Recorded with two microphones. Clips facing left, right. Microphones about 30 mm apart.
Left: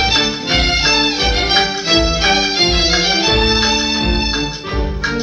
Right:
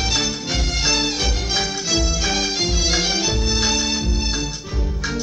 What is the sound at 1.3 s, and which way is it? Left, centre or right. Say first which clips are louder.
Music: left 8 dB; left.